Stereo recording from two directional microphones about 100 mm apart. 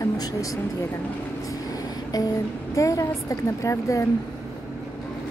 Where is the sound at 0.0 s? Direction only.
35° left (ahead or behind).